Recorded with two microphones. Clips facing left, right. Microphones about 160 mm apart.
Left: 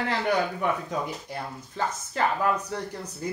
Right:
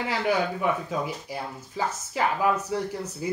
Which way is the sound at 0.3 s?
5° right (ahead or behind).